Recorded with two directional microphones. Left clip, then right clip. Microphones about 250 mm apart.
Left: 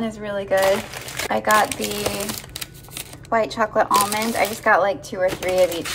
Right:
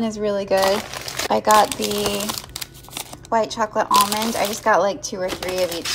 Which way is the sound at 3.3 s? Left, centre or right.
Centre.